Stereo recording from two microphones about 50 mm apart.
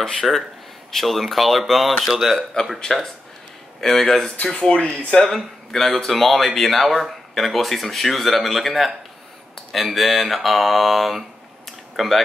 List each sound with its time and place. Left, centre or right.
0.0 s speech: centre
2.9 s speech: centre
4.6 s speech: left
5.2 s a man's voice: centre